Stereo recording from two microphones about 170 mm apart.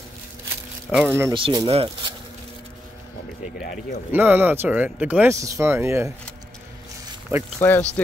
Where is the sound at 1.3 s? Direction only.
25° right (ahead or behind).